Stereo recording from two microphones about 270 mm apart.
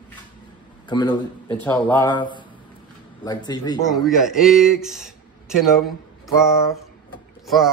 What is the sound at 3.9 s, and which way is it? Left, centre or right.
A man's voice, centre.